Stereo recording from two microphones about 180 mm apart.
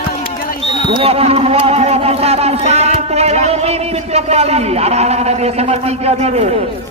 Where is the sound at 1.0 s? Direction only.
35° right (ahead or behind).